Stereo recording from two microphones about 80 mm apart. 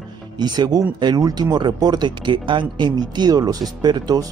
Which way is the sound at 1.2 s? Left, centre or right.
Right.